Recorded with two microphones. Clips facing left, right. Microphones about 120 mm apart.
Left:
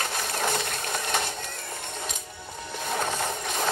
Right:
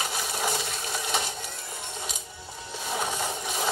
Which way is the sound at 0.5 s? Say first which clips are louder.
Left 2 dB; 55° left (ahead or behind).